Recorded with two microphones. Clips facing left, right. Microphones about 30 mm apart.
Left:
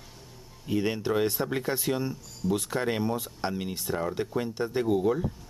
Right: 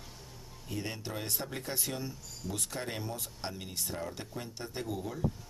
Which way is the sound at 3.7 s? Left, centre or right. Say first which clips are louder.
Left 8 dB; centre.